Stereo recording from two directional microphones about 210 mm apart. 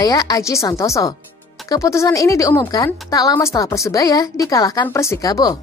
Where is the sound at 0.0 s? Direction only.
20° left (ahead or behind).